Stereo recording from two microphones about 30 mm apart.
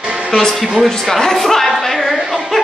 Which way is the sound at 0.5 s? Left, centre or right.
Centre.